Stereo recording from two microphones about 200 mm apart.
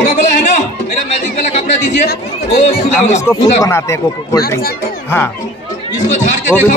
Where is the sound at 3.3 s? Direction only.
15° left (ahead or behind).